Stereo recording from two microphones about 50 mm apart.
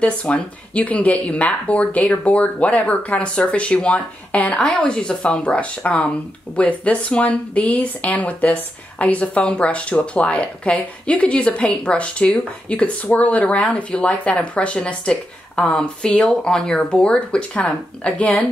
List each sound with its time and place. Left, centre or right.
0.0 s speech: left
4.6 s speech: centre